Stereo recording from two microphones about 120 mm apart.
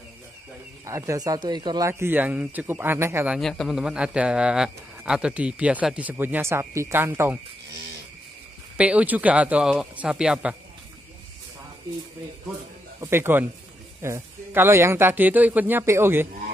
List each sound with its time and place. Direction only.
0.8 s speech: 25° right (ahead or behind)
1.9 s speech: 20° right (ahead or behind)
3.3 s speech: centre (ahead or behind); by 7.3 s 20° right (ahead or behind)
8.7 s speech: 10° right (ahead or behind)
13.0 s speech: 20° right (ahead or behind)